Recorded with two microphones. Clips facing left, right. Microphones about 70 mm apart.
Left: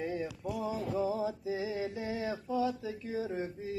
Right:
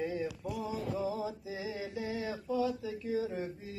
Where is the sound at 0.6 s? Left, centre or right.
Left.